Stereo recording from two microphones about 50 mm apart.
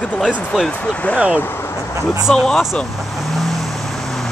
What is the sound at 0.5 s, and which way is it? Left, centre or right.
Speech, centre.